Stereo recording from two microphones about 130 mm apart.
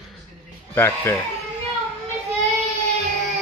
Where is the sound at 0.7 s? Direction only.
20° left (ahead or behind).